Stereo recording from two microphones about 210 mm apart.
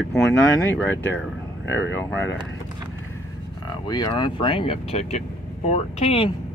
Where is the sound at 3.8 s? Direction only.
20° left (ahead or behind).